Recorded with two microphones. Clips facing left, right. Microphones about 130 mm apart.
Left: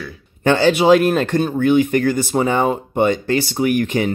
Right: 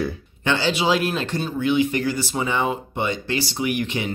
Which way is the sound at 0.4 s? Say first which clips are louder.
Left 8 dB; 50° left (ahead or behind).